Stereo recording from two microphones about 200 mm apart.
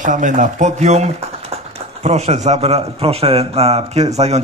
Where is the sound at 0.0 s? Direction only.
40° right (ahead or behind).